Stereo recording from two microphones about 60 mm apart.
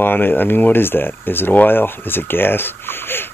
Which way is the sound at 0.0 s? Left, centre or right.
Left.